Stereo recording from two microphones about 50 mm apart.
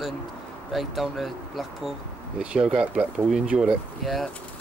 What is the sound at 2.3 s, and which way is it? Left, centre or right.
Speech, centre.